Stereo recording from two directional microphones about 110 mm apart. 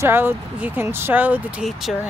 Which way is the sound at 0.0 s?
20° right (ahead or behind).